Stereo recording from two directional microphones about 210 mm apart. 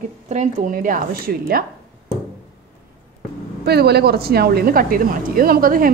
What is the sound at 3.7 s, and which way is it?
Speech, 50° right (ahead or behind).